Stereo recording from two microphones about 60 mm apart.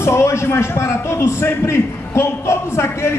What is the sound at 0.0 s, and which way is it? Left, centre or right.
A man's voice, left.